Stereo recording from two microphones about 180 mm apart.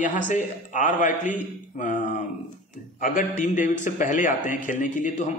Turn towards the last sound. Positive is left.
turn(degrees=45)  # may be behind; listen again after turning